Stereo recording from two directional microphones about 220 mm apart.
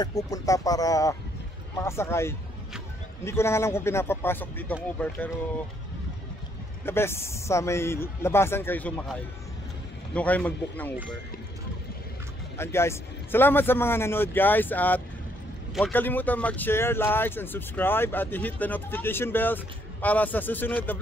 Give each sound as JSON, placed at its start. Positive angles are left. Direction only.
{"t": 0.0, "sound": "speech", "side_deg": 15}
{"t": 6.9, "sound": "speech", "side_deg": 10}
{"t": 12.5, "sound": "speech", "side_deg": 10}